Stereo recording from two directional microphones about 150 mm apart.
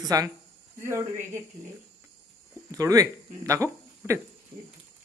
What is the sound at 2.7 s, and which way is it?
Speech, 25° right (ahead or behind).